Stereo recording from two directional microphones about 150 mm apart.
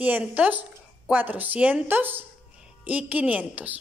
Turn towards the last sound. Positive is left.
turn(degrees=-10)  # may be behind; listen again after turning